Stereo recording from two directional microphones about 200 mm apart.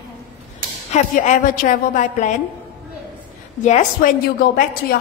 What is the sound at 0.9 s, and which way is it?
A woman's voice, 40° left (ahead or behind).